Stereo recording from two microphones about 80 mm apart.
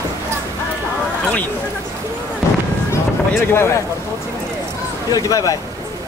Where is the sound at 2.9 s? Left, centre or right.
Left.